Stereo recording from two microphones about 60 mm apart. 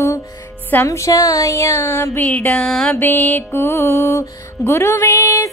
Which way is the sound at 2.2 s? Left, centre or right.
Left.